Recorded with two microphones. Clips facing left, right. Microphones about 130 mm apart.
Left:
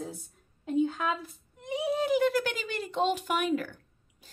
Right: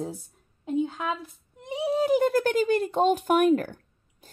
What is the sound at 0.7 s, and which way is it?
A woman's voice, 20° right (ahead or behind).